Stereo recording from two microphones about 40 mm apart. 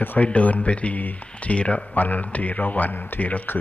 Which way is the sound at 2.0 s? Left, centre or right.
Left.